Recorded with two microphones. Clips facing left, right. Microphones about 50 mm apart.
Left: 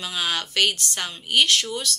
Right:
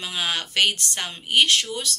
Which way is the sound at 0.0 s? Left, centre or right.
Centre.